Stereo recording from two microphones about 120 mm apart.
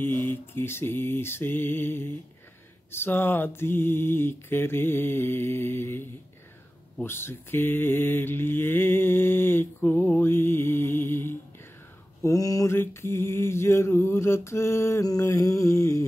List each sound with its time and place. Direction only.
0.0 s mantra: 15° left (ahead or behind)
12.2 s mantra: 30° left (ahead or behind)